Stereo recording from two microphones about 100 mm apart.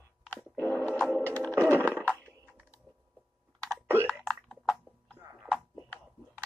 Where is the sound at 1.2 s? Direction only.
15° left (ahead or behind).